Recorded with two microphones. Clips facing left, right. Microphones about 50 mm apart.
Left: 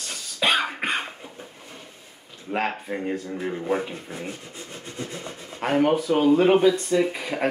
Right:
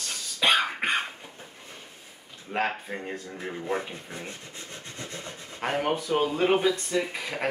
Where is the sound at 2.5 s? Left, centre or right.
Centre.